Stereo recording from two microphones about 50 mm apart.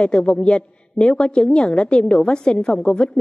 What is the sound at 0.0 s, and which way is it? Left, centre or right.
A woman's voice, centre.